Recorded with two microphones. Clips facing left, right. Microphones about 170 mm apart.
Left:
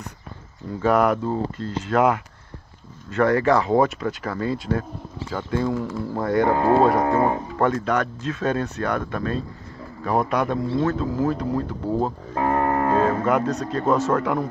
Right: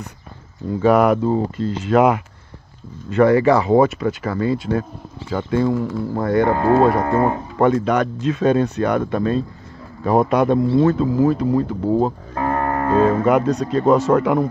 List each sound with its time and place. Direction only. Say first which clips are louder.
0.8 s speech: right 5 dB; 10° right (ahead or behind); by 7.2 s 10° left (ahead or behind)
7.5 s a man's voice: right 5 dB; 15° right (ahead or behind)
10.8 s speech: right 7 dB; 15° right (ahead or behind)
12.4 s music: even; 15° left (ahead or behind)
13.0 s speech: right 5 dB; 15° right (ahead or behind)